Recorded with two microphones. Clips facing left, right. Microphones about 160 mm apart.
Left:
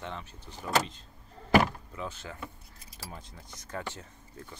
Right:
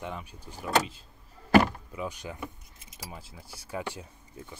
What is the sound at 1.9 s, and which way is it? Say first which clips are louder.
Keys jangling: right 3 dB; 10° right (ahead or behind).